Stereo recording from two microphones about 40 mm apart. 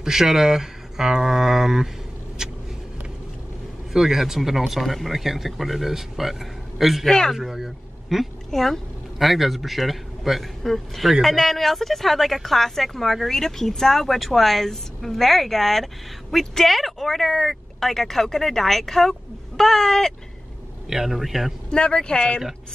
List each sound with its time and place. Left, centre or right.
0.0 s speech: centre
3.9 s a woman's voice: centre
7.1 s a man's voice: centre
7.3 s a man's voice: centre
8.5 s a woman's voice: centre
10.6 s a man's voice: centre
20.9 s a woman's voice: centre
21.6 s speech: left